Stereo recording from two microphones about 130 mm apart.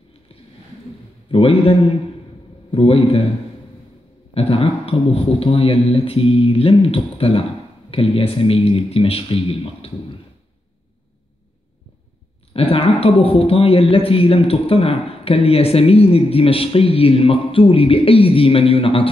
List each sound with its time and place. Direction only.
1.3 s a man's voice: 45° left (ahead or behind)
4.3 s a man's voice: 50° left (ahead or behind)
12.5 s a man's voice: 50° left (ahead or behind)